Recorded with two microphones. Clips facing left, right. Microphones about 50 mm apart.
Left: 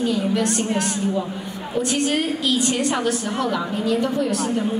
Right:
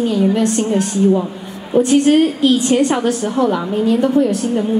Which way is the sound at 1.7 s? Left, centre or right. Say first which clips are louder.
Right 10 dB; right.